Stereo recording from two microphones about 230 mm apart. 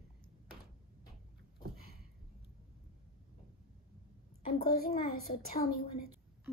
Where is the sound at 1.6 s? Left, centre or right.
Right.